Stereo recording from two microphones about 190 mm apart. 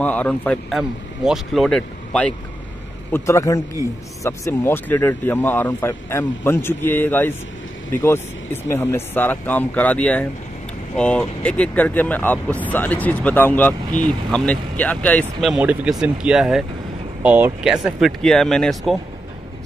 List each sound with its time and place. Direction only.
0.0 s speech: 5° left (ahead or behind)
3.1 s speech: 15° left (ahead or behind)
15.5 s speech: 5° right (ahead or behind)